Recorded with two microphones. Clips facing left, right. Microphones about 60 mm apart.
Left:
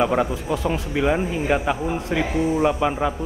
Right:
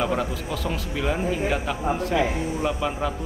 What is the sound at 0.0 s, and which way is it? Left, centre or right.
A man's voice, left.